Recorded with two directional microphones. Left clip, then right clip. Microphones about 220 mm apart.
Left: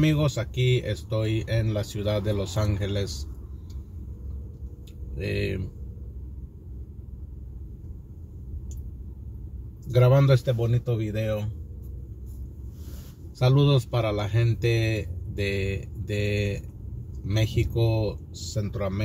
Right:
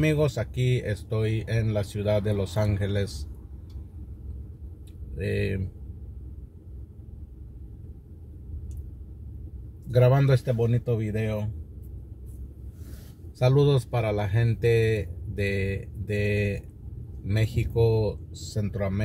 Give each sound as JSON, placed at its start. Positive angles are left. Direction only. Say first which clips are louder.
{"t": 0.0, "sound": "speech", "louder": "right 1 dB", "side_deg": -25}
{"t": 5.1, "sound": "speech", "louder": "even", "side_deg": -25}
{"t": 9.9, "sound": "speech", "louder": "left 1 dB", "side_deg": -30}
{"t": 13.4, "sound": "speech", "louder": "right 1 dB", "side_deg": -25}